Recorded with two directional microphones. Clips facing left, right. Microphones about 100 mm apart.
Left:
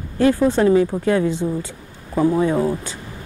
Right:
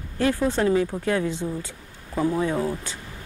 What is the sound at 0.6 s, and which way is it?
Speech, 30° left (ahead or behind).